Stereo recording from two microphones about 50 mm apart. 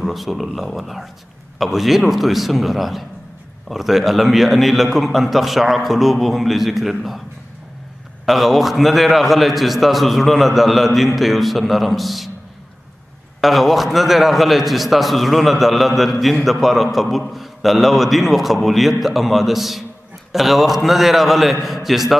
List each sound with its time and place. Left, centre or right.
0.0 s a man's voice: centre
8.3 s a man's voice: centre
13.4 s a man's voice: centre